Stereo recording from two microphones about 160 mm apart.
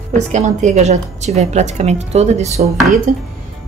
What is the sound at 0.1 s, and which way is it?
A woman's voice, 50° right (ahead or behind).